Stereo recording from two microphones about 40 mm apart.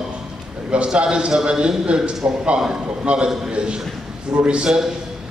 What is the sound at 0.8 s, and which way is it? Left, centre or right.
A man's voice, right.